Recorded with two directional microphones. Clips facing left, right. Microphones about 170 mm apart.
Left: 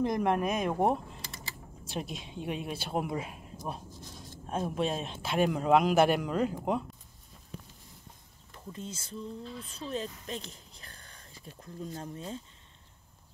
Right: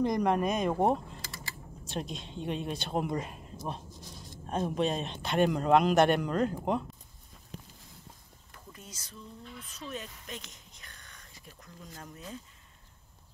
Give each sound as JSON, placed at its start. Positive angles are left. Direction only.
{"t": 0.0, "sound": "speech", "side_deg": 5}
{"t": 8.7, "sound": "speech", "side_deg": 25}